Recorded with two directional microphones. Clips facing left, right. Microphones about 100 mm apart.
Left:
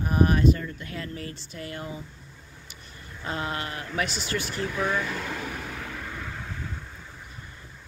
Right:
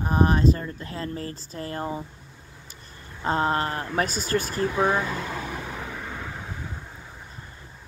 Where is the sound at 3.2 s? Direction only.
35° right (ahead or behind).